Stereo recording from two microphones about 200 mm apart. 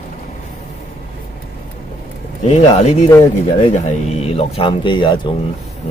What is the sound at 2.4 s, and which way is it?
Speech, 35° left (ahead or behind).